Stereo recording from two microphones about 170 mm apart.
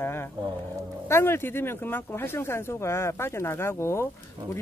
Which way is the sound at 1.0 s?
15° left (ahead or behind).